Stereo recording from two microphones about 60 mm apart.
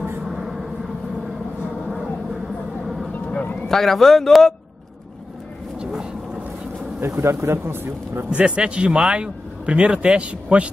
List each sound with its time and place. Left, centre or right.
0.3 s vehicle: centre
3.3 s a sound: left
3.6 s speech: centre
5.8 s vehicle: centre
7.0 s a man's voice: right
8.3 s a man's voice: centre